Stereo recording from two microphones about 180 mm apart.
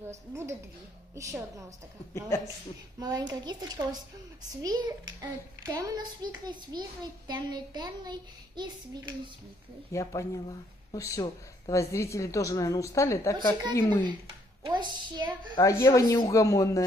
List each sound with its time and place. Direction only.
0.3 s a woman's voice: 15° right (ahead or behind)
2.1 s a woman's voice: 15° left (ahead or behind)
3.0 s a child's voice: 20° right (ahead or behind)
9.8 s a woman's voice: 15° left (ahead or behind)
14.6 s a child's voice: 25° right (ahead or behind)
15.5 s a woman's voice: 15° left (ahead or behind)